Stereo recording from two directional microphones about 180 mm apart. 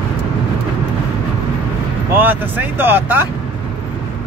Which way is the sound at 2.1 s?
10° right (ahead or behind).